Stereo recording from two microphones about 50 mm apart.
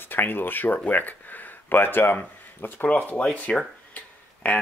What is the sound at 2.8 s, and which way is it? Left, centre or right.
Speech, left.